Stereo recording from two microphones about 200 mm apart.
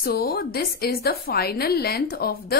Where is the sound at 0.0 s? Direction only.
50° left (ahead or behind).